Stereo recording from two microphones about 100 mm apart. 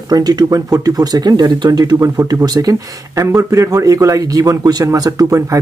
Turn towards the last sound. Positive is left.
turn(degrees=-30)  # may be behind; listen again after turning